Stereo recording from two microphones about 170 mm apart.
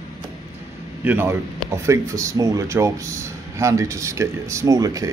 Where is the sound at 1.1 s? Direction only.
10° right (ahead or behind).